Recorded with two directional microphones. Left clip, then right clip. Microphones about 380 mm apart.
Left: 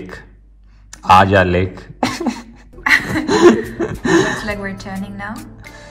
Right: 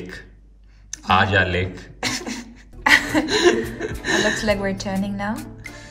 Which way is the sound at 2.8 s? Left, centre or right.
Centre.